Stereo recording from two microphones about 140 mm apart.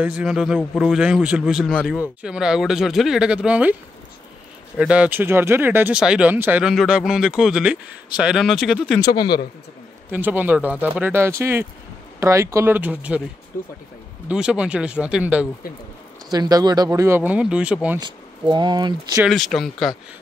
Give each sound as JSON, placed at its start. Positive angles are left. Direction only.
{"t": 0.0, "sound": "speech", "side_deg": -5}
{"t": 4.7, "sound": "speech", "side_deg": -10}
{"t": 6.7, "sound": "speech", "side_deg": 0}
{"t": 9.0, "sound": "speech", "side_deg": 30}
{"t": 10.1, "sound": "speech", "side_deg": -10}
{"t": 13.5, "sound": "speech", "side_deg": 75}
{"t": 14.3, "sound": "speech", "side_deg": -5}
{"t": 16.3, "sound": "speech", "side_deg": -30}
{"t": 18.5, "sound": "speech", "side_deg": -35}
{"t": 19.1, "sound": "speech", "side_deg": 0}